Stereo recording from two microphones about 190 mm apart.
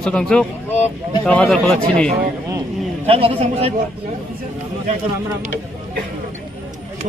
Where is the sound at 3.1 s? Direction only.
30° right (ahead or behind).